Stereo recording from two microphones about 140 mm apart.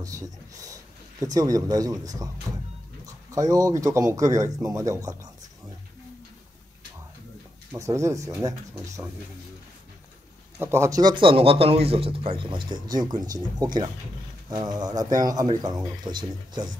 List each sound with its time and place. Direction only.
0.0 s speech: 25° right (ahead or behind)
7.7 s speech: 20° right (ahead or behind)
10.6 s a man's voice: 20° right (ahead or behind)